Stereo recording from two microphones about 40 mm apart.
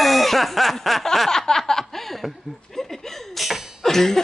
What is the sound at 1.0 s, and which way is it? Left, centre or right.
Chuckle, centre.